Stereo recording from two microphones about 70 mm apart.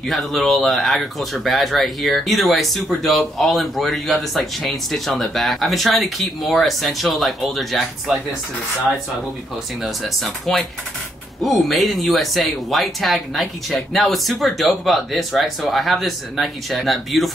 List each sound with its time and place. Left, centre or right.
0.1 s speech: centre
9.8 s speech: centre